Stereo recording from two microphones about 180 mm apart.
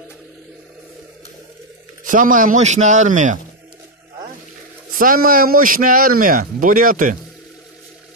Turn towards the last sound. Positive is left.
turn(degrees=-50)  # may be behind; listen again after turning